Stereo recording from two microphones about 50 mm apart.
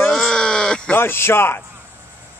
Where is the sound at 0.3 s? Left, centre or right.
Centre.